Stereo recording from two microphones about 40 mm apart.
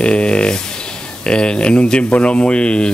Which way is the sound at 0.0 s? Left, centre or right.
Left.